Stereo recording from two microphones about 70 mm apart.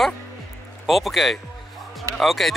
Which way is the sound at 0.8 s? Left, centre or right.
Centre.